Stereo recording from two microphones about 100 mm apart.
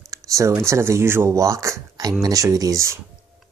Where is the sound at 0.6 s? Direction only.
25° right (ahead or behind).